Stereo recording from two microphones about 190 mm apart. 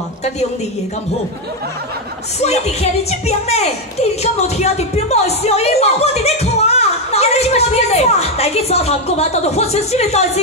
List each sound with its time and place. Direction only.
2.4 s a woman's voice: 35° left (ahead or behind)